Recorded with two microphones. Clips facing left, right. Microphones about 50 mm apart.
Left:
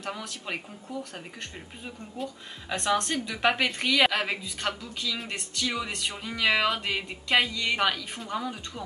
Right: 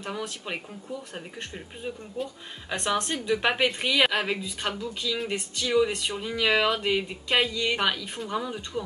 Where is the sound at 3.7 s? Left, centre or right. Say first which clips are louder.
Even; centre.